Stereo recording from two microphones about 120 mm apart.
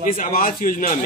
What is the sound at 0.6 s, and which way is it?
Speech, 90° left.